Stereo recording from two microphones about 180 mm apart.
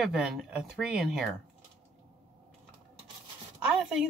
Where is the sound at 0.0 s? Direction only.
Centre (ahead or behind).